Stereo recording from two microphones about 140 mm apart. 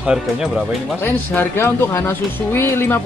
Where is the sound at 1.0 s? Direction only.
15° left (ahead or behind).